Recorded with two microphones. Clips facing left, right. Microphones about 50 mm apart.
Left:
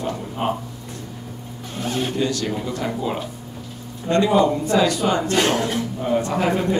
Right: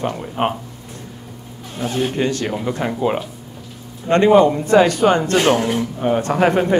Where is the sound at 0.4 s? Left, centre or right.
Right.